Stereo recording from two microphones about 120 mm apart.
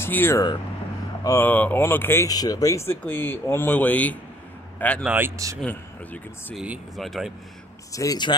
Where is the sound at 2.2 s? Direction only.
30° left (ahead or behind); by 5.0 s 10° left (ahead or behind).